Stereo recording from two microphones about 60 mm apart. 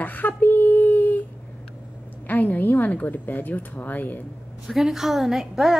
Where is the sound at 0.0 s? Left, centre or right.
Left.